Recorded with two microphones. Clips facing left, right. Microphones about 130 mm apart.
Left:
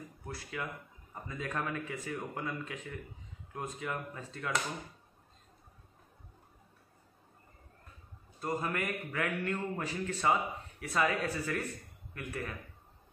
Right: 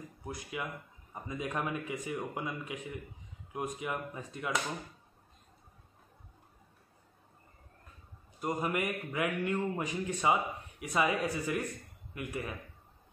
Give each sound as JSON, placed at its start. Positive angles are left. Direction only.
{"t": 0.2, "sound": "a man's voice", "side_deg": -15}
{"t": 8.4, "sound": "a man's voice", "side_deg": -15}